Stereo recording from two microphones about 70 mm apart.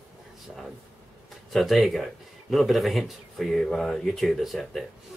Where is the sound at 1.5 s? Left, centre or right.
Centre.